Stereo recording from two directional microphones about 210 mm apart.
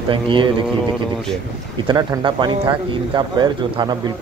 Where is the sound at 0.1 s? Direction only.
25° right (ahead or behind).